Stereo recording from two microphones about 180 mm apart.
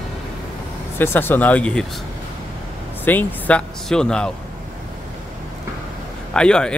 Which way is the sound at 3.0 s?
10° left (ahead or behind).